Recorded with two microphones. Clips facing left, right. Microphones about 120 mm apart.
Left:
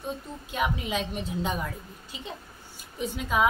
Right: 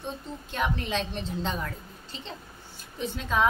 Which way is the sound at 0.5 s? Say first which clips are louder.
Left 1 dB; 5° left (ahead or behind).